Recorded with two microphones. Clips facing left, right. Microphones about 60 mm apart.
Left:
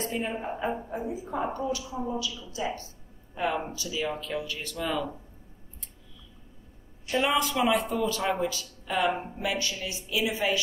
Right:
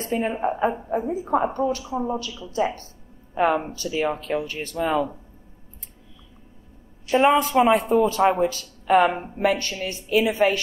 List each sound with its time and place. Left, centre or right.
0.0 s a woman's voice: right
7.1 s a woman's voice: right
8.3 s a woman's voice: right